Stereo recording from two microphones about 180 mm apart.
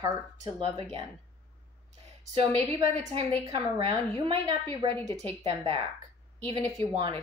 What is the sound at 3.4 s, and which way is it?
A woman's voice, 25° right (ahead or behind).